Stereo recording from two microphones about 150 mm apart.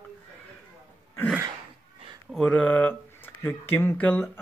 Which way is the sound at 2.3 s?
5° left (ahead or behind).